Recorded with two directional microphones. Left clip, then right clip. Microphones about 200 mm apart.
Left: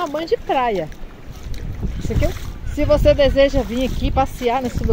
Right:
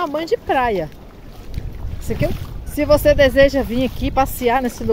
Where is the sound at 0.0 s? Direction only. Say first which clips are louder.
Right 1 dB; 10° right (ahead or behind).